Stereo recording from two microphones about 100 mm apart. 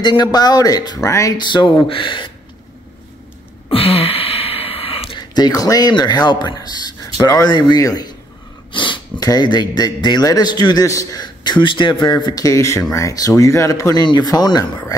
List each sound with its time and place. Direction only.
0.0 s speech: 45° left (ahead or behind); by 1.3 s 30° left (ahead or behind)
1.4 s speech: 50° left (ahead or behind)
3.7 s a sound: 70° left (ahead or behind)
5.3 s a man's voice: 40° left (ahead or behind)
8.7 s a sound: 55° left (ahead or behind)
9.2 s a man's voice: 40° left (ahead or behind)